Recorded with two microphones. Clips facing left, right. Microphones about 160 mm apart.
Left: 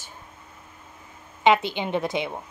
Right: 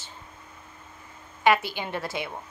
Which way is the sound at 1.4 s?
20° left (ahead or behind).